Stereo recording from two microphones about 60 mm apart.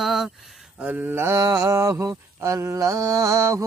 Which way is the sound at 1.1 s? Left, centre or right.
Right.